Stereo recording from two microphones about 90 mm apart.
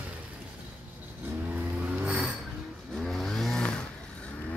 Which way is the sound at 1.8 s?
15° right (ahead or behind).